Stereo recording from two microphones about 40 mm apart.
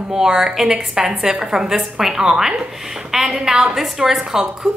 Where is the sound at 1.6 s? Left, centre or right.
Centre.